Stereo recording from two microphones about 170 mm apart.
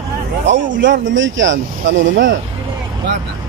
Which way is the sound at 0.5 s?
90° right.